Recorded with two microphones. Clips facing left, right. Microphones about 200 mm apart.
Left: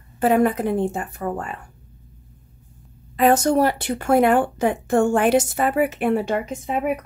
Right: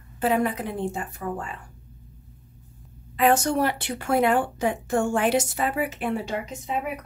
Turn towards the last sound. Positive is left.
turn(degrees=55)  # may be behind; listen again after turning